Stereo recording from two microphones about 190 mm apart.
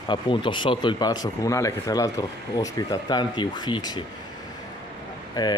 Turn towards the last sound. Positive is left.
turn(degrees=20)  # may be behind; listen again after turning